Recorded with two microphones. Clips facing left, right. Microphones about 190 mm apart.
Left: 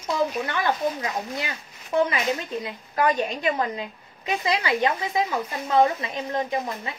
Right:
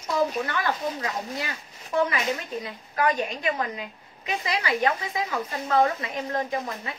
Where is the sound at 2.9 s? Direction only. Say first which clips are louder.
Left 2 dB; 30° left (ahead or behind).